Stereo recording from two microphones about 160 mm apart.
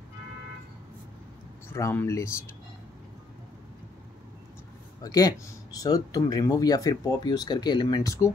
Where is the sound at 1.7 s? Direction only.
15° left (ahead or behind).